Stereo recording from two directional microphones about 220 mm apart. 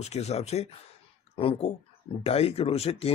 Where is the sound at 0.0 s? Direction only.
30° left (ahead or behind).